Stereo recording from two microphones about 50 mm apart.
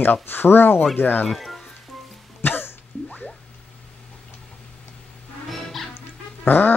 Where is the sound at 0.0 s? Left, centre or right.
Left.